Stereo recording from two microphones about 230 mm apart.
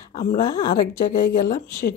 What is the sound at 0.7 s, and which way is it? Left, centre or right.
Speech, left.